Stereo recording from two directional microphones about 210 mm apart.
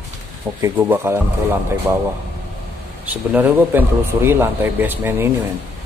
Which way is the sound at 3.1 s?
10° right (ahead or behind).